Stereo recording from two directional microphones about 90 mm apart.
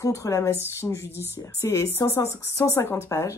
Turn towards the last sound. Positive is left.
turn(degrees=30)  # may be behind; listen again after turning